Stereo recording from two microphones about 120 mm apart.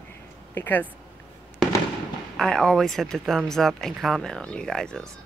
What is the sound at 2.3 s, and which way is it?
Speech, 5° left (ahead or behind).